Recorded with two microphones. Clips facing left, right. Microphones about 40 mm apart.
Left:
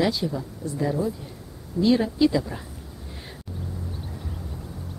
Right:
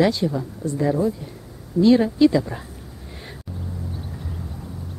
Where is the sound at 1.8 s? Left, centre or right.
Centre.